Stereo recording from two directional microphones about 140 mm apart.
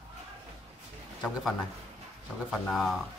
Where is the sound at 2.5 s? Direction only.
Centre (ahead or behind).